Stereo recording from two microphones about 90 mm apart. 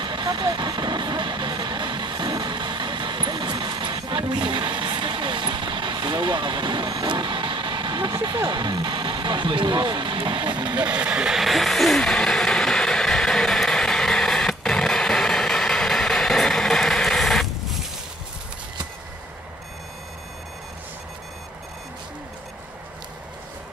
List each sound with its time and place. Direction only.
0.0 s vehicle: 55° right (ahead or behind)
11.0 s vehicle: 10° right (ahead or behind)